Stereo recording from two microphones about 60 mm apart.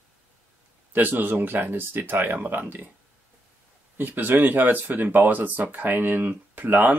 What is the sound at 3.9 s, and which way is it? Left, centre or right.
Speech, right.